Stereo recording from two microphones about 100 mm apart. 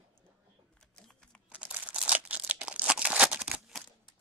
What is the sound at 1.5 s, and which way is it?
Crumpling, 15° right (ahead or behind).